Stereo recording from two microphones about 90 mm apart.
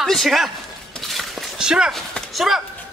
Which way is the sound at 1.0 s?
Centre (ahead or behind).